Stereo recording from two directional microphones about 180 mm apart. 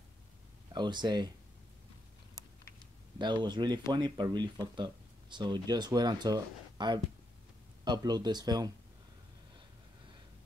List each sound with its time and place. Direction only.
0.7 s speech: 25° right (ahead or behind)
3.2 s speech: 25° right (ahead or behind)